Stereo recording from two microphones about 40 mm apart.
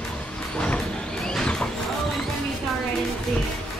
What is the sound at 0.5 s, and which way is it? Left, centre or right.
Vehicle, left.